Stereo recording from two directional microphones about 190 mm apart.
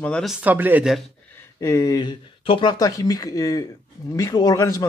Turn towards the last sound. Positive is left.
turn(degrees=20)  # may be behind; listen again after turning